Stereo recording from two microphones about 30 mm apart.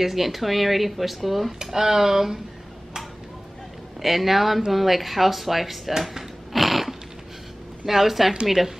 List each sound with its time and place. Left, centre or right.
0.0 s speech: centre
1.6 s speech: centre
4.0 s speech: centre
6.5 s cat: centre
7.8 s speech: centre